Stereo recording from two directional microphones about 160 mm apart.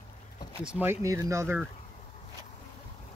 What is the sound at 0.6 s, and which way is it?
Speech, 10° right (ahead or behind).